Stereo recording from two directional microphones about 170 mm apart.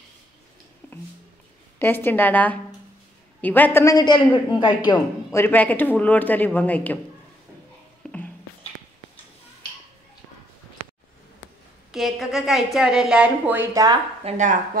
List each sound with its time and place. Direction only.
1.8 s a man's voice: 10° left (ahead or behind)
5.4 s speech: 10° left (ahead or behind)
8.0 s music: 5° left (ahead or behind)
11.9 s a woman's voice: centre (ahead or behind)
14.2 s speech: 45° right (ahead or behind)